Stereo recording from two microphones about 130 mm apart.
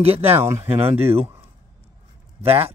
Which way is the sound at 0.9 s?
50° right (ahead or behind).